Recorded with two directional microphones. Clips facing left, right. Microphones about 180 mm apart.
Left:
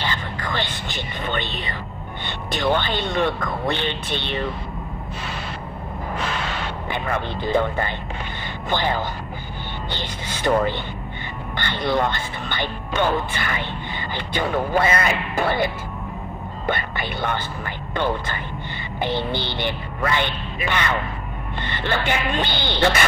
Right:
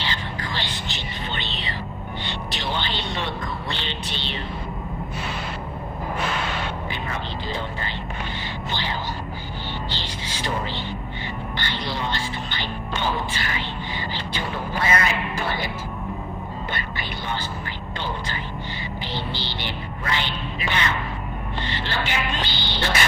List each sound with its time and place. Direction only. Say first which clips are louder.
0.0 s music: left 2 dB; 50° left (ahead or behind)
2.2 s speech: left 9 dB; 50° left (ahead or behind)
6.9 s speech: left 5 dB; 55° left (ahead or behind)
9.8 s music: left 2 dB; 55° left (ahead or behind)
11.5 s speech: left 9 dB; 55° left (ahead or behind)